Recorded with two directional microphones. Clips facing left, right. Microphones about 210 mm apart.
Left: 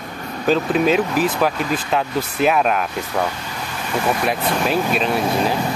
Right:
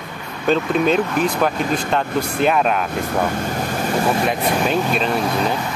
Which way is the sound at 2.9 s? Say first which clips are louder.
Right 2 dB; 50° right (ahead or behind).